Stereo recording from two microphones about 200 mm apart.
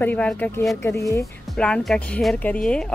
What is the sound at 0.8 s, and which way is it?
Speech, 15° left (ahead or behind).